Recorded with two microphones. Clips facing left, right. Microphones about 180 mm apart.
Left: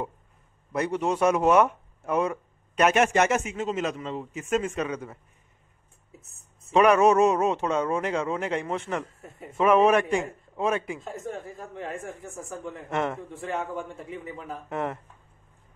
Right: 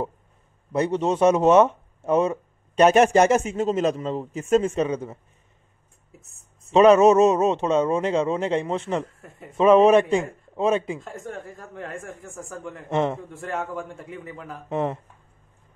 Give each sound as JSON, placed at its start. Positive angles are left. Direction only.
{"t": 0.7, "sound": "speech", "side_deg": -25}
{"t": 6.2, "sound": "a sound", "side_deg": 0}
{"t": 6.7, "sound": "speech", "side_deg": -25}
{"t": 11.0, "sound": "a man's voice", "side_deg": 0}
{"t": 12.9, "sound": "speech", "side_deg": -25}
{"t": 13.3, "sound": "a man's voice", "side_deg": 0}
{"t": 14.7, "sound": "speech", "side_deg": -20}